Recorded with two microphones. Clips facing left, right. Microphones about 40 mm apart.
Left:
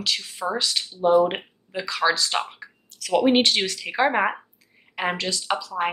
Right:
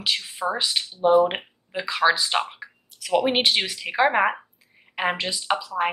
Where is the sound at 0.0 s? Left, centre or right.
Centre.